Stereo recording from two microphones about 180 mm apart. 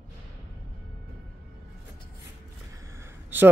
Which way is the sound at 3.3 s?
10° right (ahead or behind).